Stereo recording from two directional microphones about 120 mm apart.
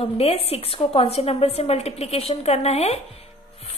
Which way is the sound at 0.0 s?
55° left (ahead or behind).